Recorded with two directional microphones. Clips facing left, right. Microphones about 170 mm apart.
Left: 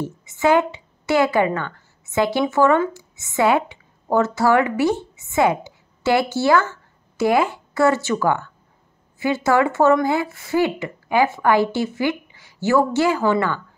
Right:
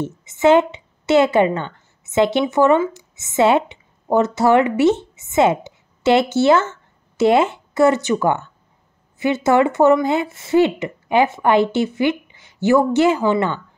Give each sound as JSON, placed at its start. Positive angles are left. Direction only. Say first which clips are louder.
{"t": 0.0, "sound": "a woman's voice", "louder": "right 4 dB", "side_deg": -20}